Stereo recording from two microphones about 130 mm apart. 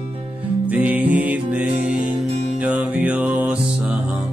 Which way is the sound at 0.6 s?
10° right (ahead or behind).